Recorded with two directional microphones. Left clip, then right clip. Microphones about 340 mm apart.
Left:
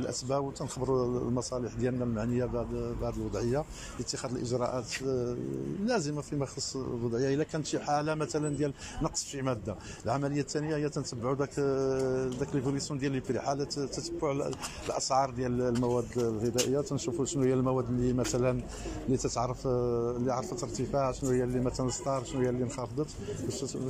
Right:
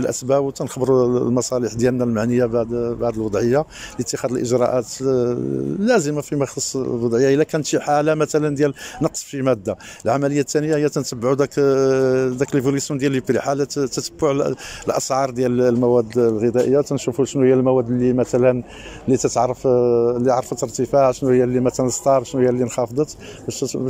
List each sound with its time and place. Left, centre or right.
0.0 s speech: right